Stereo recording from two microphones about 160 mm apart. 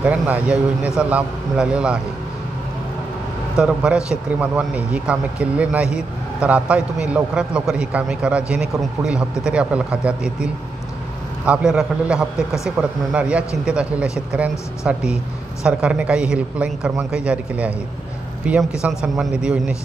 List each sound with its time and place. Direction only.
0.0 s a man's voice: 10° right (ahead or behind)
3.5 s a man's voice: 5° right (ahead or behind)